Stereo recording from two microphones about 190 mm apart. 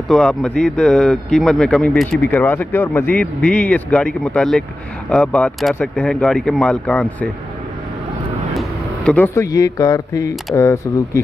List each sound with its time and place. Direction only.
0.1 s speech: 5° left (ahead or behind)
8.5 s speech: 5° left (ahead or behind)